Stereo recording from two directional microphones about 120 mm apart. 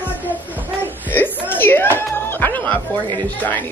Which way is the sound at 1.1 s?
15° left (ahead or behind).